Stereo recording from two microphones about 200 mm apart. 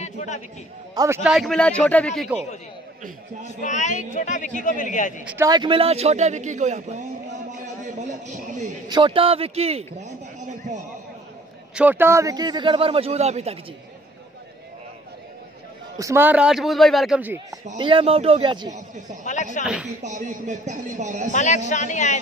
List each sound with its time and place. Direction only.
0.0 s a sound: 35° left (ahead or behind)
0.9 s a man's voice: 15° right (ahead or behind)
1.3 s speech: centre (ahead or behind)
3.4 s a man's voice: 35° left (ahead or behind)
5.2 s a man's voice: 10° right (ahead or behind)
5.5 s a man's voice: 25° right (ahead or behind)
8.8 s a man's voice: 25° right (ahead or behind)
11.7 s a man's voice: 10° right (ahead or behind); by 13.6 s 35° right (ahead or behind)
16.0 s speech: 15° right (ahead or behind)
17.7 s a man's voice: 25° right (ahead or behind)
19.2 s a man's voice: 40° left (ahead or behind)
19.6 s speech: 5° right (ahead or behind)
20.0 s a man's voice: 40° right (ahead or behind)
21.3 s a man's voice: 35° left (ahead or behind)